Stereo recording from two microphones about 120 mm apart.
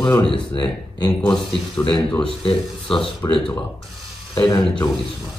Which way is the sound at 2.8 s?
5° left (ahead or behind).